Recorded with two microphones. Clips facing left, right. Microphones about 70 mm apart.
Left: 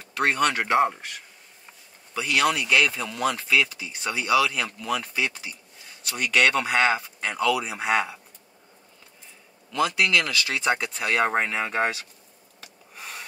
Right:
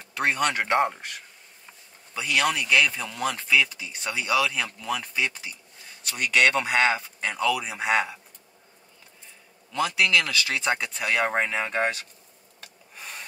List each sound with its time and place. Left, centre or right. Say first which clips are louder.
0.2 s speech: left 2 dB; centre
2.1 s speech: left 2 dB; centre
9.8 s speech: left 1 dB; left
11.1 s speech: left 1 dB; centre
12.9 s a sound: left 1 dB; centre